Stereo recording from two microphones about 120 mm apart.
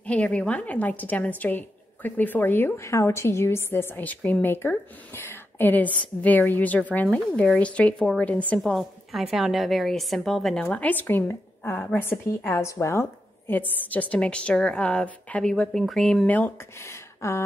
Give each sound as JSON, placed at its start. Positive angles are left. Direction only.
{"t": 0.0, "sound": "a woman's voice", "side_deg": 10}
{"t": 8.5, "sound": "a woman's voice", "side_deg": 0}